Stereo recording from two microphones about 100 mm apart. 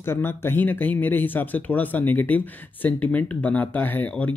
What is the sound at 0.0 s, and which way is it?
Speech, 25° left (ahead or behind).